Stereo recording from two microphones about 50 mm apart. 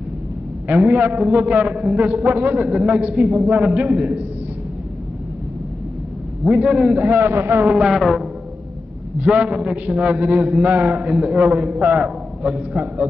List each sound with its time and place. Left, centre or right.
0.7 s a man's voice: right
6.5 s a man's voice: centre
7.0 s a man's voice: right
7.9 s music: centre
9.2 s a man's voice: right